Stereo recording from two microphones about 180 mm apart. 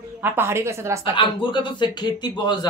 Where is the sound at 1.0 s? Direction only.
30° left (ahead or behind).